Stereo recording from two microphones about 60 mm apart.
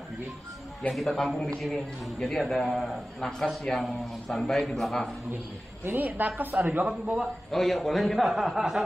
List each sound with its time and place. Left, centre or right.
0.9 s a man's voice: centre
3.2 s a man's voice: centre
5.9 s a woman's voice: right
7.5 s a man's voice: centre